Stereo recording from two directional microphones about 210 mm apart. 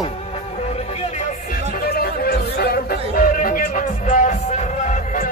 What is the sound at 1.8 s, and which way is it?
Chatter, 45° left (ahead or behind).